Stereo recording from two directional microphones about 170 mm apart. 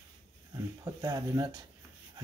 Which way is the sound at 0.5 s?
20° right (ahead or behind).